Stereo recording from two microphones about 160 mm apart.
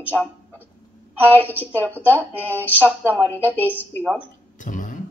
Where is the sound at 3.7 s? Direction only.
5° left (ahead or behind).